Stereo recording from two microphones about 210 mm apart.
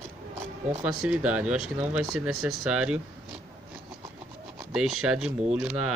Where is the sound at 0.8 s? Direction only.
5° right (ahead or behind).